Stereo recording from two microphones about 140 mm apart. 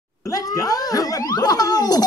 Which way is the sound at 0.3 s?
25° left (ahead or behind).